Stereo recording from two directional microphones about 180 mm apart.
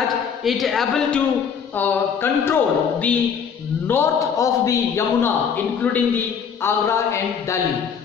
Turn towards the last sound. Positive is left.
turn(degrees=15)  # may be behind; listen again after turning